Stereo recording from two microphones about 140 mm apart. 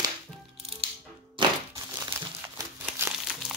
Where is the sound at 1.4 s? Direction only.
35° right (ahead or behind).